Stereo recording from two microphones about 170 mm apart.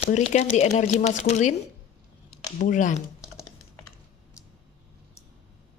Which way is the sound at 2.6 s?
50° left (ahead or behind).